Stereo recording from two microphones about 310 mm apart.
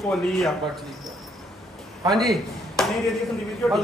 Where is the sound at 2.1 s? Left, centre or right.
Centre.